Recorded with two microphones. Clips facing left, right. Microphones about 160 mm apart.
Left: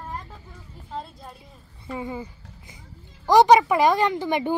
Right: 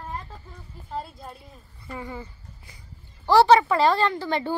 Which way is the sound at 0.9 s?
5° right (ahead or behind).